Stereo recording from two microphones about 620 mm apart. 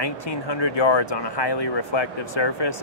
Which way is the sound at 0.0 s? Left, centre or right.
Left.